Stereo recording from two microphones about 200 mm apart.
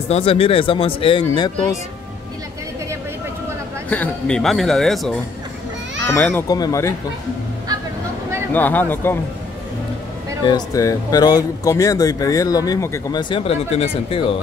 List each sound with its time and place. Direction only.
0.1 s speech: 30° left (ahead or behind)
3.9 s speech: 5° left (ahead or behind)
8.5 s speech: 10° left (ahead or behind)
10.4 s speech: 20° left (ahead or behind)